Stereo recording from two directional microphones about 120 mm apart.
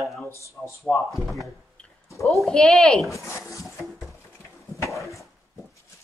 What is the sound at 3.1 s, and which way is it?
Speech, 25° left (ahead or behind).